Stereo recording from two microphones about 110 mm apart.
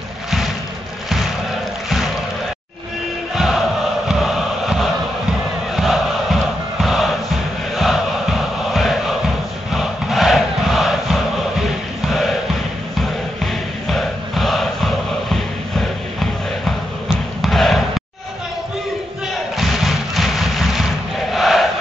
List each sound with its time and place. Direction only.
3.3 s chant: centre (ahead or behind)
4.1 s music: centre (ahead or behind)
5.8 s crowd: centre (ahead or behind)
6.8 s music: centre (ahead or behind)
9.7 s crowd: centre (ahead or behind)
13.4 s chant: centre (ahead or behind)
16.2 s basketball bounce: centre (ahead or behind)
19.5 s a sound: centre (ahead or behind)
21.3 s crowd: centre (ahead or behind)